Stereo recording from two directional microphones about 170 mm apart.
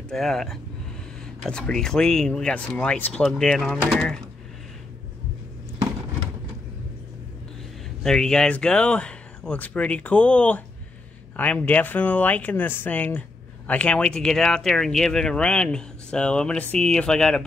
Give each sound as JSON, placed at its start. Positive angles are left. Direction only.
{"t": 0.1, "sound": "speech", "side_deg": 0}
{"t": 8.0, "sound": "speech", "side_deg": 5}